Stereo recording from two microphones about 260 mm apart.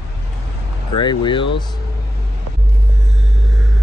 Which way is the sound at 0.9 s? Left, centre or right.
Centre.